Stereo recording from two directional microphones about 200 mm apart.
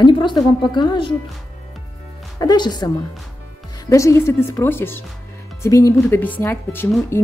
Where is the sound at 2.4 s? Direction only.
20° left (ahead or behind).